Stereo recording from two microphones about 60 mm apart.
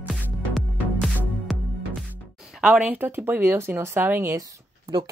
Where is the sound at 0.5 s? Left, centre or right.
Centre.